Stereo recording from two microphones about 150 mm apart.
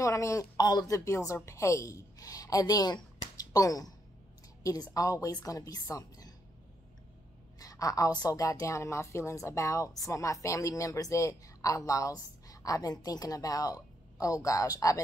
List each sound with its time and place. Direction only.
0.0 s a woman's voice: 20° left (ahead or behind)
7.5 s a sound: 25° left (ahead or behind)
8.2 s a woman's voice: 25° left (ahead or behind)